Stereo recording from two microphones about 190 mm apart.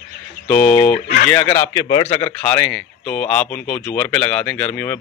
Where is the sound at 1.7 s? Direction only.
25° left (ahead or behind).